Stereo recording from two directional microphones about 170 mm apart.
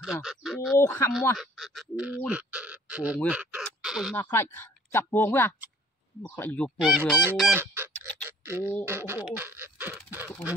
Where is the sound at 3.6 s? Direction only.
5° right (ahead or behind).